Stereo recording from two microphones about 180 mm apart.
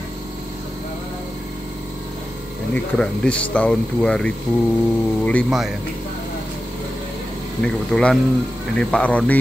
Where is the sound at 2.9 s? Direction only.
5° left (ahead or behind).